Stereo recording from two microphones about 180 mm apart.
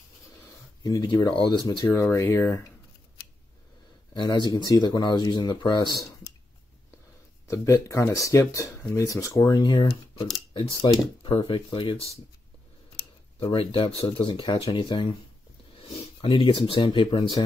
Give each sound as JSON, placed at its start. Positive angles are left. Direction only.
{"t": 0.8, "sound": "speech", "side_deg": 20}
{"t": 1.9, "sound": "speech", "side_deg": 15}
{"t": 4.1, "sound": "speech", "side_deg": 25}
{"t": 7.4, "sound": "speech", "side_deg": 15}
{"t": 13.4, "sound": "speech", "side_deg": 30}